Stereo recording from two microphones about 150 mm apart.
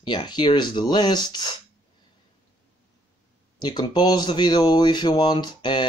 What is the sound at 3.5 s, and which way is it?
Speech, 30° left (ahead or behind).